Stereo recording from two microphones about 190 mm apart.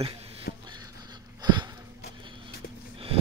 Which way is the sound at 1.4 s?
20° right (ahead or behind).